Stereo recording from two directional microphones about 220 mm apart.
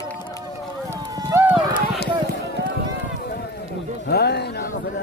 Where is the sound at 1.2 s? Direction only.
10° right (ahead or behind).